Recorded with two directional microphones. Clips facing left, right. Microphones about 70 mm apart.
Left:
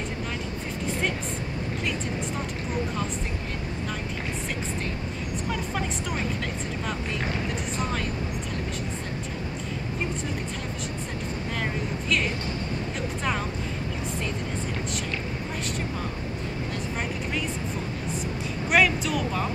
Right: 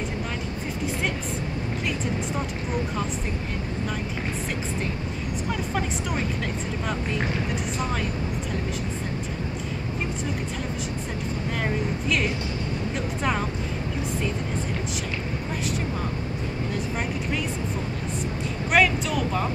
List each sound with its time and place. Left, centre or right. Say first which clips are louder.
18.7 s speech: right 1 dB; centre